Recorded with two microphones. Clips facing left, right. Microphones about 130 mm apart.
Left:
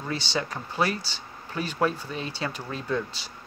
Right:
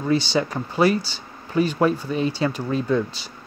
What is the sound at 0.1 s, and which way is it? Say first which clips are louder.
Speech: right 9 dB; 5° right (ahead or behind).